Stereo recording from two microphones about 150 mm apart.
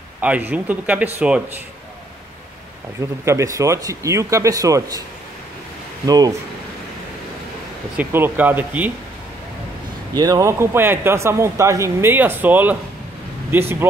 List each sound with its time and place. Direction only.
0.2 s a man's voice: 10° right (ahead or behind)
3.3 s speech: 20° right (ahead or behind)
6.0 s speech: 25° right (ahead or behind)
7.9 s a man's voice: 10° right (ahead or behind)
10.1 s a man's voice: 25° right (ahead or behind)